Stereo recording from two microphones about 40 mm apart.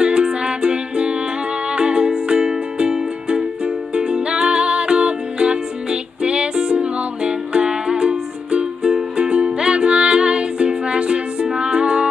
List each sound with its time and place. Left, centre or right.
0.0 s music: right